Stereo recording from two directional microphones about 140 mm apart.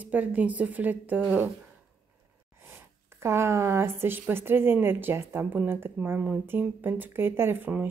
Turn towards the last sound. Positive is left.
turn(degrees=-15)  # may be behind; listen again after turning